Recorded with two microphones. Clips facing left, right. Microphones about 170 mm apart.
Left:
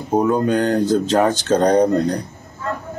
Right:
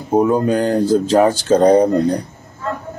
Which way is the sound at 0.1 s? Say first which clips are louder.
Right 2 dB; 5° right (ahead or behind).